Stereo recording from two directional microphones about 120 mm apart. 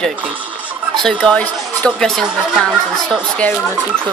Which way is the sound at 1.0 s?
5° left (ahead or behind).